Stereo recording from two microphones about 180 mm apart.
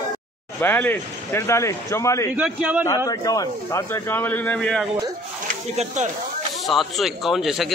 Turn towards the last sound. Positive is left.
turn(degrees=0)  # may be behind; listen again after turning